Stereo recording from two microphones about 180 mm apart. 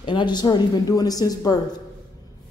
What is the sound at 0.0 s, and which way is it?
A woman's voice, 25° left (ahead or behind).